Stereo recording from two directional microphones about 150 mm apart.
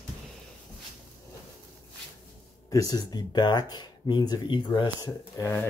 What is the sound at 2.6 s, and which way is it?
Speech, 25° left (ahead or behind).